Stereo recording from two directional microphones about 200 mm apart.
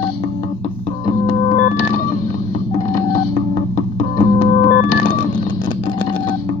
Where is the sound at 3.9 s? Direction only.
35° left (ahead or behind).